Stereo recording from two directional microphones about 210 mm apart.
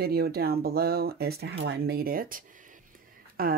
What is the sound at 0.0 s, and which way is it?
Speech, 50° right (ahead or behind).